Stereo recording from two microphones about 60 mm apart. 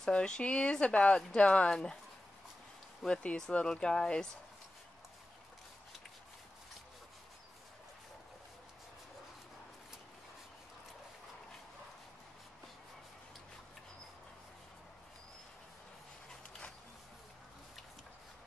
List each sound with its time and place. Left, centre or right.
0.0 s speech: centre
3.1 s speech: centre